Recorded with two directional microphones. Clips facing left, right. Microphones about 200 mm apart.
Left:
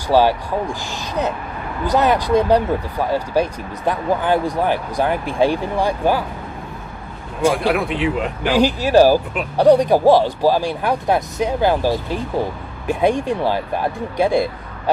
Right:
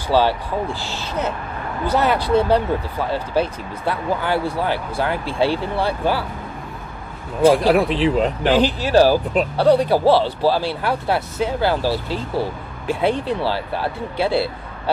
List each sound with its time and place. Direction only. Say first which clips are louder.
0.1 s speech: left 3 dB; 15° left (ahead or behind)
7.5 s speech: right 3 dB; 35° right (ahead or behind)
8.5 s speech: left 4 dB; 10° left (ahead or behind)